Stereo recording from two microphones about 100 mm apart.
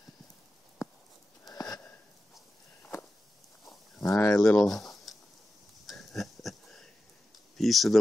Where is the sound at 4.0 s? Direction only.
30° left (ahead or behind).